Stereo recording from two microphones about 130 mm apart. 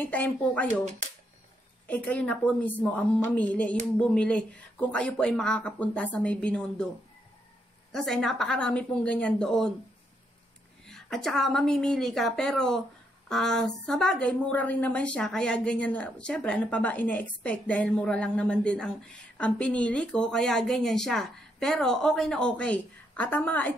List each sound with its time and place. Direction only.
0.0 s a woman's voice: 10° left (ahead or behind)
1.9 s a woman's voice: 10° left (ahead or behind)
7.9 s a woman's voice: 5° left (ahead or behind)
10.9 s a woman's voice: 5° left (ahead or behind)